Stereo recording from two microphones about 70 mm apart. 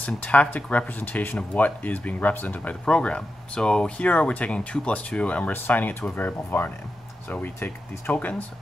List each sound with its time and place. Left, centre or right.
0.0 s speech: left